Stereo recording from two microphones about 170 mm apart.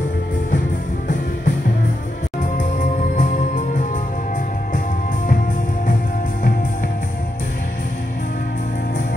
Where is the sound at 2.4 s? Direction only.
45° left (ahead or behind).